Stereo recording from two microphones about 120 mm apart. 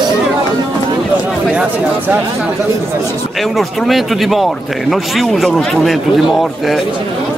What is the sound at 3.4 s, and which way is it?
Speech, centre (ahead or behind).